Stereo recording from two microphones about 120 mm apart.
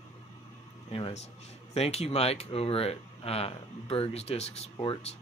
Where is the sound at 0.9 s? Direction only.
55° left (ahead or behind).